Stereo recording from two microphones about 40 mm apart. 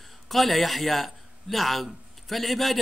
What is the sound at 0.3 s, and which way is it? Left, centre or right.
A man's voice, centre.